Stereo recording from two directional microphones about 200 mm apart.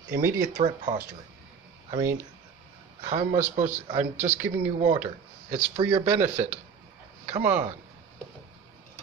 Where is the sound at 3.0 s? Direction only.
35° right (ahead or behind).